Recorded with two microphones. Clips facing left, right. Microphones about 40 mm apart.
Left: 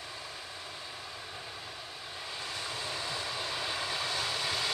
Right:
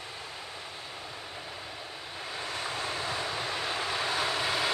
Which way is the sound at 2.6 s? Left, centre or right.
Right.